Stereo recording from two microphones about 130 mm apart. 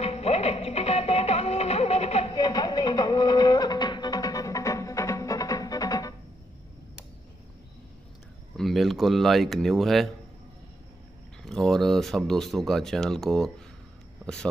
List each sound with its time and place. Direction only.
0.0 s music: 50° left (ahead or behind)
2.3 s music: 30° left (ahead or behind)
8.5 s speech: centre (ahead or behind)
11.4 s speech: 5° left (ahead or behind)